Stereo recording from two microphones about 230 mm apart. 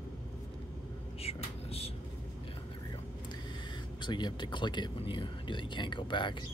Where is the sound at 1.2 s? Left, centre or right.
Left.